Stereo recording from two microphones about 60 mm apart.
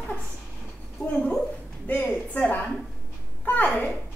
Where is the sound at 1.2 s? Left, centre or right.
Centre.